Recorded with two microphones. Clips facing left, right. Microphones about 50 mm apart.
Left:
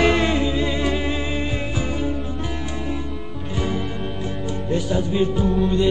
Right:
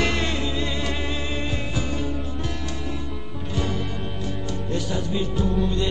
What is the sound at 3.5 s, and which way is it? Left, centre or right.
Music, centre.